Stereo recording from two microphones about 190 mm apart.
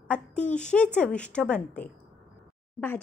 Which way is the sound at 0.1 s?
5° left (ahead or behind).